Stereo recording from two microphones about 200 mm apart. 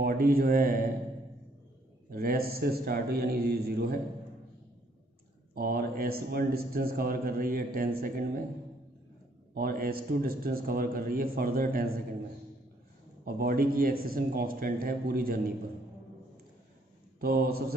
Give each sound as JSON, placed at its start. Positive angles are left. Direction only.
{"t": 0.0, "sound": "a man's voice", "side_deg": -50}
{"t": 2.0, "sound": "a man's voice", "side_deg": -50}
{"t": 5.5, "sound": "a man's voice", "side_deg": -50}
{"t": 9.5, "sound": "a man's voice", "side_deg": -50}
{"t": 13.2, "sound": "a man's voice", "side_deg": -50}
{"t": 17.2, "sound": "a man's voice", "side_deg": -50}